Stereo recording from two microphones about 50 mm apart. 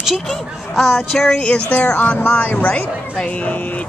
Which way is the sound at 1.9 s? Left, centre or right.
Left.